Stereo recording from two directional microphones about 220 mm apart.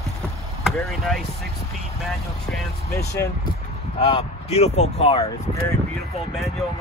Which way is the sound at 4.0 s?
25° left (ahead or behind).